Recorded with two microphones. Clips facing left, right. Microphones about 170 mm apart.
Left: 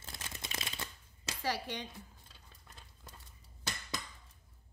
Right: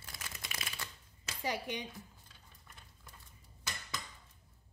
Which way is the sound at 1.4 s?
15° right (ahead or behind).